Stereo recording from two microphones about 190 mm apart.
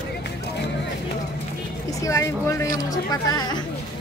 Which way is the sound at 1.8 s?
15° left (ahead or behind).